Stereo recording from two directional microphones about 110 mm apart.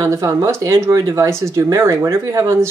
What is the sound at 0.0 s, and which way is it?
Speech, 25° right (ahead or behind).